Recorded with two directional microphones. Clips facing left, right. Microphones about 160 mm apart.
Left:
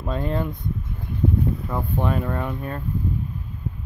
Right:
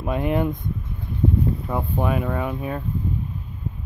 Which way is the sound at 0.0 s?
15° right (ahead or behind).